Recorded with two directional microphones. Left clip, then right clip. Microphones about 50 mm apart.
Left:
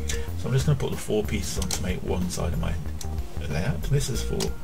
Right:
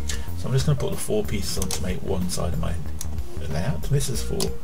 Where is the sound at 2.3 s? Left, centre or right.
Centre.